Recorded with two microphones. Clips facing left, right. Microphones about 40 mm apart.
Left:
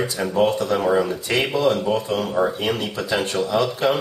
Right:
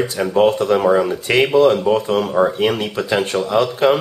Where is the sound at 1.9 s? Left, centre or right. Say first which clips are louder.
Right 5 dB; right.